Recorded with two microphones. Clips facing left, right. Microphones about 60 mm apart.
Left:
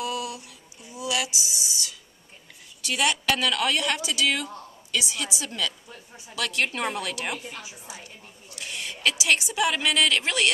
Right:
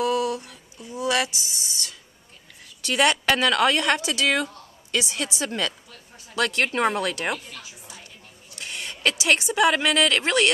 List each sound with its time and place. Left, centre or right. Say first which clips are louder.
0.0 s a sound: right 7 dB; right
2.8 s a woman's voice: right 5 dB; right
5.9 s speech: left 2 dB; centre
6.3 s a woman's voice: right 4 dB; right
7.3 s a woman's voice: left 1 dB; left
8.5 s a sound: right 1 dB; right
9.2 s a woman's voice: right 5 dB; right